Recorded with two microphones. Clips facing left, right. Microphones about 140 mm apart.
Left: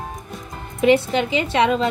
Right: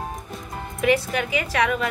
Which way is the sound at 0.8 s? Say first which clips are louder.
Left 5 dB; 25° left (ahead or behind).